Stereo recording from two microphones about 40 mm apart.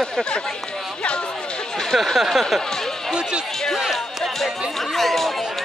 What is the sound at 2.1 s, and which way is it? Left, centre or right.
Speech, centre.